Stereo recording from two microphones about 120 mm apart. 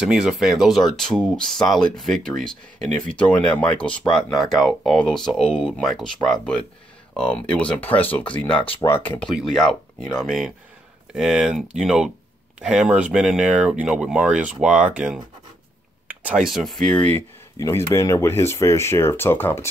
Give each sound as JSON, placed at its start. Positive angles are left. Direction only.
{"t": 0.0, "sound": "speech", "side_deg": -5}
{"t": 9.3, "sound": "speech", "side_deg": 0}
{"t": 16.1, "sound": "a sound", "side_deg": -15}
{"t": 16.4, "sound": "speech", "side_deg": 0}
{"t": 17.6, "sound": "speech", "side_deg": 20}